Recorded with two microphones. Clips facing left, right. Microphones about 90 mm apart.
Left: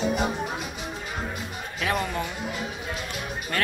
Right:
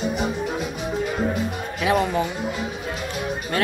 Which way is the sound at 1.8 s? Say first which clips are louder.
Right 7 dB; 10° right (ahead or behind).